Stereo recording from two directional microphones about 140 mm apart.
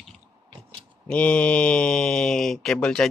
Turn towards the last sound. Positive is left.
turn(degrees=5)  # may be behind; listen again after turning